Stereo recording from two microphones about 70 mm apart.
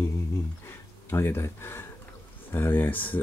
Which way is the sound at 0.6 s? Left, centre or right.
Left.